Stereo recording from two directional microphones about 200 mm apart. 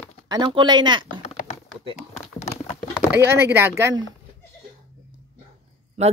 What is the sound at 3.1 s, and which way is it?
Speech, 15° right (ahead or behind).